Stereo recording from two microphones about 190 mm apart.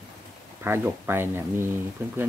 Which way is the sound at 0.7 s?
10° right (ahead or behind).